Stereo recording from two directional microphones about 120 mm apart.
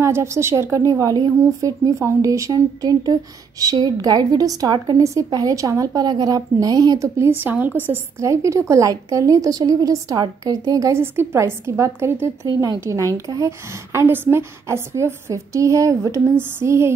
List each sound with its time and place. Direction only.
0.0 s a woman's voice: 25° right (ahead or behind)